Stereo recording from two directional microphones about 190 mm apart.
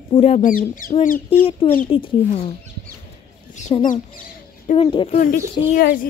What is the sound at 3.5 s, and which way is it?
Speech, 40° left (ahead or behind).